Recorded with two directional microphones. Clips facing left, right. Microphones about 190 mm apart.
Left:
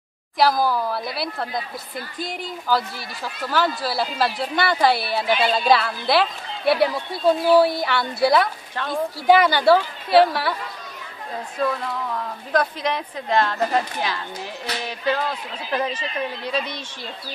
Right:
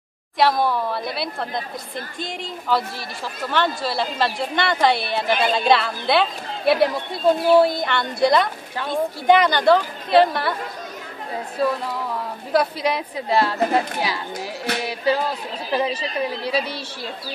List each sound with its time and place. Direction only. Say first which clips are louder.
0.4 s speech: even; centre (ahead or behind)
11.5 s speech: right 2 dB; 10° right (ahead or behind)
16.0 s speech: right 3 dB; 35° right (ahead or behind)